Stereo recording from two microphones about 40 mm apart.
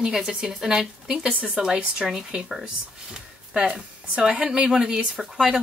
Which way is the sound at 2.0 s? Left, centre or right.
Centre.